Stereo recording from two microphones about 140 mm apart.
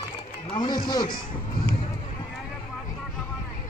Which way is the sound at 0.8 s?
30° left (ahead or behind).